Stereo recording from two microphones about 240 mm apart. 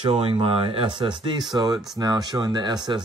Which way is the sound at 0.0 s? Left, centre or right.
Right.